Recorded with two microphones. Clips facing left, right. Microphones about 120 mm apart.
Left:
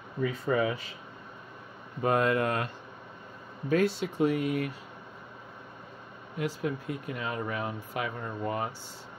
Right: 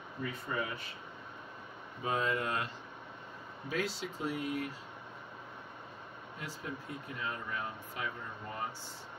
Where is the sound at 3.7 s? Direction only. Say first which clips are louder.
Left 10 dB; 55° left (ahead or behind).